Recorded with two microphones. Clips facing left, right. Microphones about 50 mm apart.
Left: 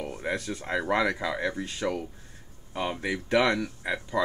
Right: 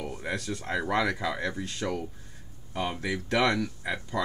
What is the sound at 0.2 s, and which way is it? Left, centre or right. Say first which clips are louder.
Speech: left 3 dB; centre.